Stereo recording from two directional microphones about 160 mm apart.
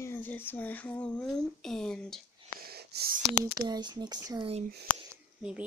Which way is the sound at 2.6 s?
80° right.